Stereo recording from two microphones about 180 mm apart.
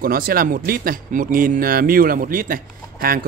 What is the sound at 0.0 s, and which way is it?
Speech, 55° right (ahead or behind).